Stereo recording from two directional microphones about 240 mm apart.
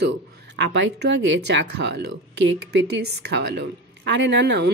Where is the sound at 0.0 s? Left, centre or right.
Right.